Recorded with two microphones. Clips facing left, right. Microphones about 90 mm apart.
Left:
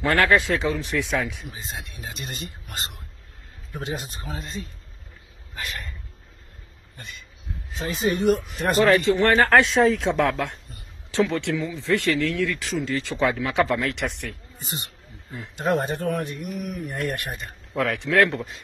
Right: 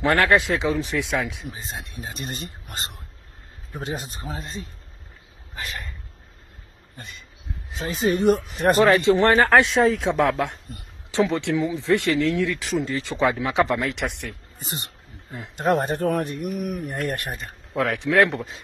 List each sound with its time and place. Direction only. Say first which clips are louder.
0.0 s speech: right 1 dB; 5° right (ahead or behind)
1.0 s speech: even; centre (ahead or behind)
2.0 s speech: right 2 dB; 35° right (ahead or behind)
7.8 s speech: right 1 dB; 35° right (ahead or behind)
8.7 s speech: even; 5° right (ahead or behind)
9.0 s speech: right 2 dB; 25° right (ahead or behind)
9.3 s speech: right 1 dB; 5° right (ahead or behind)
15.5 s speech: right 2 dB; 45° right (ahead or behind)
17.4 s speech: right 1 dB; centre (ahead or behind)
17.9 s speech: right 1 dB; 15° right (ahead or behind)